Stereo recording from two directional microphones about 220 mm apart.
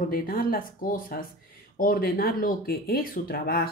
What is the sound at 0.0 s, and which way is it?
Speech, 40° left (ahead or behind).